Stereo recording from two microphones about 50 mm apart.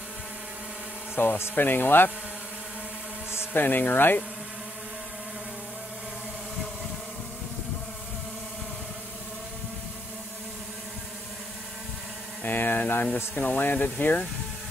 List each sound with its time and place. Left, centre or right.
1.2 s speech: left
3.5 s speech: left
12.4 s speech: left